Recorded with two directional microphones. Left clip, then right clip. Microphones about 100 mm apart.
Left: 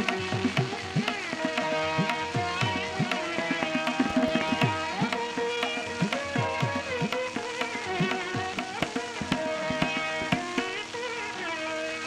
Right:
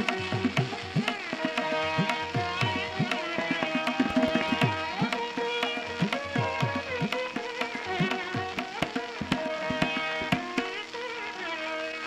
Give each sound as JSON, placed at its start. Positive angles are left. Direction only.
{"t": 1.4, "sound": "music", "side_deg": -30}
{"t": 5.1, "sound": "music", "side_deg": 0}